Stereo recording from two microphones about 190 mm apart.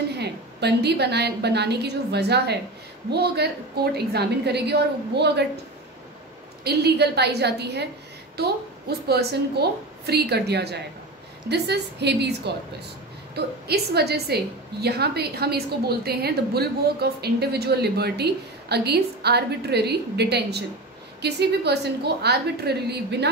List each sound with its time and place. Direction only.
0.1 s a woman's voice: 60° right (ahead or behind)
6.6 s a woman's voice: 60° right (ahead or behind)